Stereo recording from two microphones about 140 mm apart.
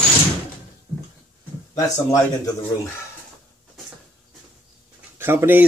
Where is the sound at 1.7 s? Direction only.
25° left (ahead or behind).